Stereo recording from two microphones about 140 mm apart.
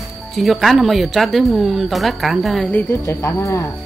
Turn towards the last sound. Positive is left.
turn(degrees=20)  # may be behind; listen again after turning